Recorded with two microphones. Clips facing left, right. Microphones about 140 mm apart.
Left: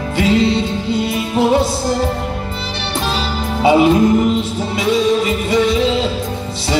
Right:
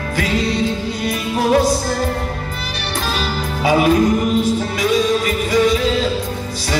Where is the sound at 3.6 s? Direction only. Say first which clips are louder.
Left 3 dB; 25° left (ahead or behind).